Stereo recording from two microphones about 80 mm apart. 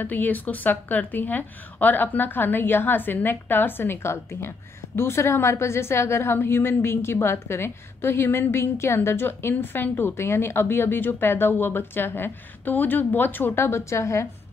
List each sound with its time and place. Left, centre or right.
0.0 s a woman's voice: left